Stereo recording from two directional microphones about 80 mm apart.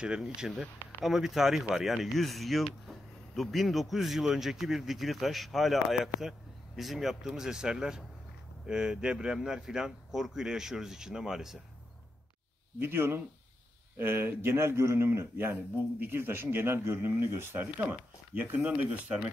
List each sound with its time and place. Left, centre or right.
0.0 s speech: centre
12.7 s a man's voice: right